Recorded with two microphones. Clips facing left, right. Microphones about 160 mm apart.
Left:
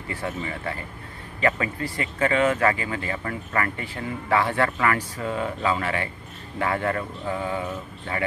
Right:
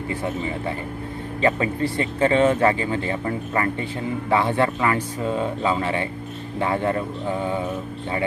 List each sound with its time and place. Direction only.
0.1 s speech: 20° right (ahead or behind)